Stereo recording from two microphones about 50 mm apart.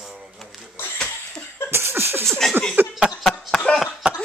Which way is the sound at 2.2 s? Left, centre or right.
Centre.